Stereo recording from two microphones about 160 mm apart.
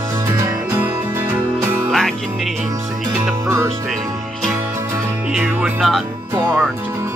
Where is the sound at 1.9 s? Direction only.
Centre (ahead or behind).